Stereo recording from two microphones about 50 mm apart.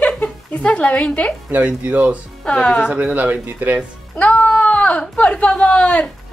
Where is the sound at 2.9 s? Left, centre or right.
Right.